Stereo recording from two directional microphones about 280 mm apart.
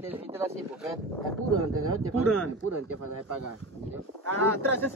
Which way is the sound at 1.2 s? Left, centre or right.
Right.